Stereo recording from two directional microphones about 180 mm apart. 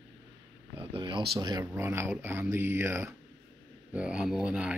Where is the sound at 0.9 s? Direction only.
25° right (ahead or behind).